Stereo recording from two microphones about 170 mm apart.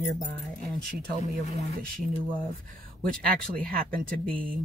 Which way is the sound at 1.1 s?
60° right (ahead or behind).